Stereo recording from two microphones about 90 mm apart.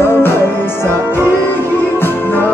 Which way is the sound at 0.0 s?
25° left (ahead or behind).